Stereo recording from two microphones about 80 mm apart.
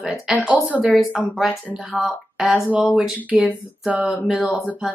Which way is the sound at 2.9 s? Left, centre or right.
Centre.